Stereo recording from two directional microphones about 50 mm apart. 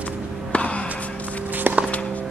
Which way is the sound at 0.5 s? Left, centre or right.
Left.